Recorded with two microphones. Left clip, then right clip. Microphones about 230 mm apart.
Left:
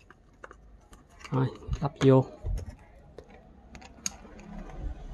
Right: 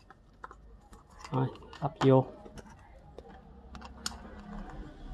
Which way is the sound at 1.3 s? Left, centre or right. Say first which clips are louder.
Left 2 dB; centre.